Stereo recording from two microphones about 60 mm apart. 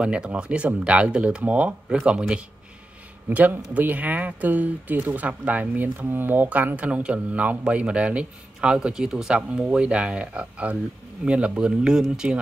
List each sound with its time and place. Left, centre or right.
0.0 s speech: centre
3.3 s speech: right
6.8 s speech: centre